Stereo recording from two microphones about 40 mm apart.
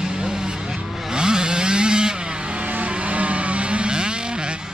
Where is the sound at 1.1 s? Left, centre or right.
Centre.